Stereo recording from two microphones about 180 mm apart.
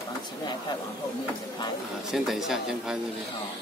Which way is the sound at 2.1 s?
Centre (ahead or behind).